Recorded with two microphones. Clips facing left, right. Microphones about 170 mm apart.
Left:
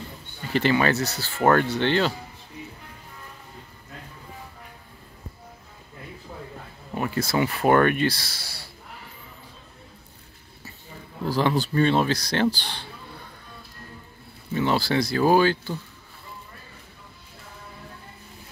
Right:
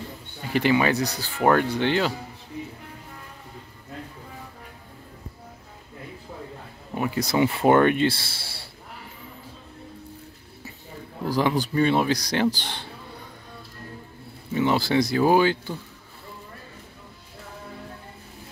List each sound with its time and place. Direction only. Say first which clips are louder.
0.4 s speech: right 1 dB; 10° right (ahead or behind)
7.0 s speech: right 2 dB; 15° right (ahead or behind)
11.2 s speech: even; 15° right (ahead or behind)
14.5 s speech: right 1 dB; 15° right (ahead or behind)